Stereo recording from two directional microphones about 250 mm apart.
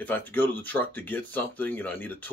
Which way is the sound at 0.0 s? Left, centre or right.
Centre.